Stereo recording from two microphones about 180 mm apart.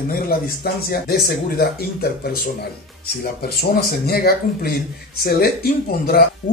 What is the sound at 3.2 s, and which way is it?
Speech, 60° left (ahead or behind).